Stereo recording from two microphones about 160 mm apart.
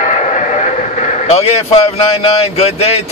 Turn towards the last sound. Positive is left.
turn(degrees=40)  # may be behind; listen again after turning